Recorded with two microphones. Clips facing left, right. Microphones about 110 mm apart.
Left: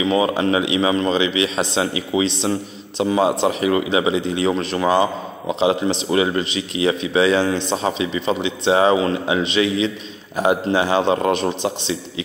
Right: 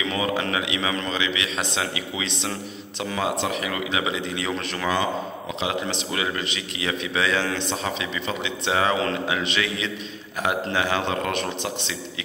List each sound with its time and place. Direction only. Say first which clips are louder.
0.0 s speech: left 7 dB; 25° left (ahead or behind)